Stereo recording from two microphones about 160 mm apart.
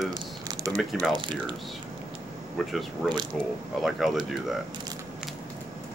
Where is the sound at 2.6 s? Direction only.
Centre (ahead or behind).